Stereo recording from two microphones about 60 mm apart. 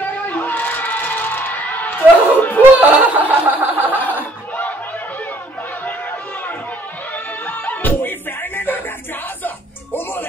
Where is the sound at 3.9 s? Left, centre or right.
Left.